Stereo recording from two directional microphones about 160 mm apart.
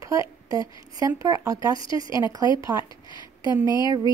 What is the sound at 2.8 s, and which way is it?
A woman's voice, 30° left (ahead or behind).